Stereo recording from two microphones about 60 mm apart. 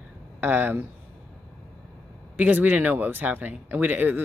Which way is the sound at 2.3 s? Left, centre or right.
Right.